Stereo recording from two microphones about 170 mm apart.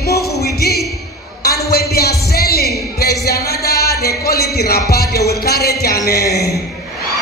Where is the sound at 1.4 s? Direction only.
65° left (ahead or behind).